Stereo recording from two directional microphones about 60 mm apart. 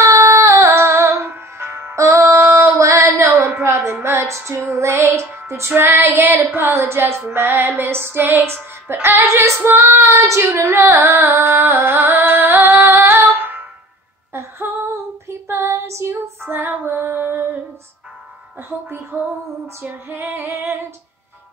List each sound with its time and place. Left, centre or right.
0.0 s music: right
2.0 s female singing: right
3.6 s music: right
5.8 s child singing: right
11.1 s music: right
15.2 s female singing: right
16.4 s child singing: right
18.6 s child singing: right